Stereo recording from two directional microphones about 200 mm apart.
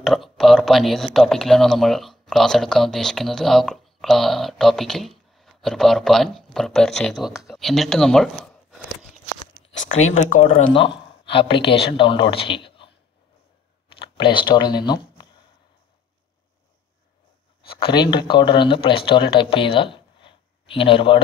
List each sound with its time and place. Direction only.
0.0 s speech: centre (ahead or behind)
9.7 s speech: 80° left
10.1 s speech: 35° left (ahead or behind)
11.3 s speech: 25° left (ahead or behind)
13.9 s speech: 25° left (ahead or behind)
17.6 s speech: 25° left (ahead or behind)